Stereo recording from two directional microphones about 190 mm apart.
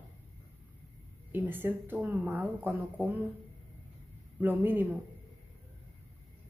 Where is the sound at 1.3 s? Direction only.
10° right (ahead or behind).